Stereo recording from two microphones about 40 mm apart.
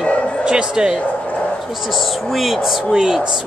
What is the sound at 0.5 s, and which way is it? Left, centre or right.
Speech, centre.